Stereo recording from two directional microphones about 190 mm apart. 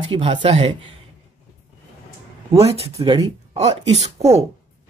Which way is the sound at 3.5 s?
35° right (ahead or behind).